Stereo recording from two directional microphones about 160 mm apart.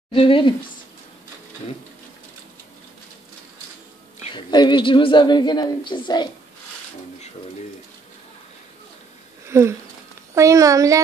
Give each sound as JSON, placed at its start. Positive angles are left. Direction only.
{"t": 0.1, "sound": "speech", "side_deg": 35}
{"t": 4.2, "sound": "a woman's voice", "side_deg": 30}
{"t": 9.5, "sound": "a child's voice", "side_deg": -15}